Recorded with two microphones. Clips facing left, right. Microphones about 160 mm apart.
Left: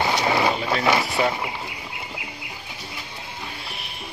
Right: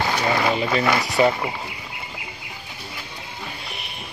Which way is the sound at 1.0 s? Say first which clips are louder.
Right 4 dB; centre (ahead or behind).